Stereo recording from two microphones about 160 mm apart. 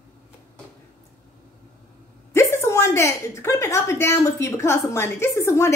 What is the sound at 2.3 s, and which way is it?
A woman's voice, 15° left (ahead or behind).